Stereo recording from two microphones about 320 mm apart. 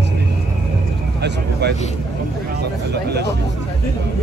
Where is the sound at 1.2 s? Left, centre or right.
Right.